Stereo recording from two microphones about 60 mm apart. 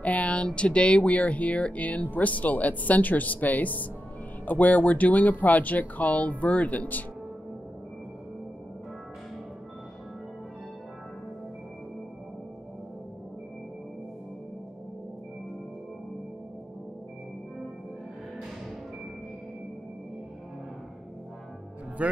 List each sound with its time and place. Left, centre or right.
0.0 s speech: left
22.0 s music: right